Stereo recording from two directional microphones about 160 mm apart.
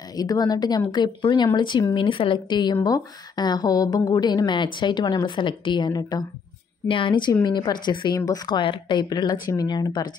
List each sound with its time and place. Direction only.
0.2 s a woman's voice: 25° left (ahead or behind)